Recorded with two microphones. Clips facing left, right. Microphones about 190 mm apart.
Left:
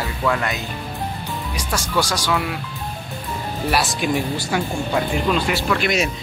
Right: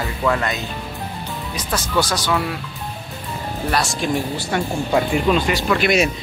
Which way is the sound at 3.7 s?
5° left (ahead or behind).